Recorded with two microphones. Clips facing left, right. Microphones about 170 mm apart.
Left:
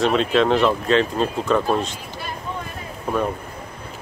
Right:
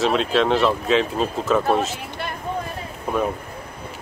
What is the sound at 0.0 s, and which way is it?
Speech, centre (ahead or behind).